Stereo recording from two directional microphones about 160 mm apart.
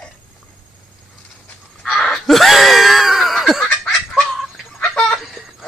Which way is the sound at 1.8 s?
Centre (ahead or behind).